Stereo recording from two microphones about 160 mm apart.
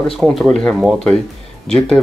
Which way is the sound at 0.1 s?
Centre (ahead or behind).